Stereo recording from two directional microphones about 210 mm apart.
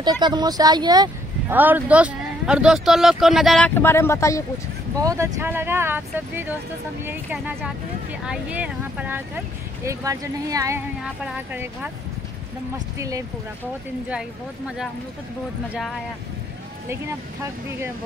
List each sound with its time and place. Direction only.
0.0 s speech: 20° right (ahead or behind)
1.6 s speech: 5° right (ahead or behind); by 4.5 s 15° left (ahead or behind)
5.0 s speech: 15° right (ahead or behind)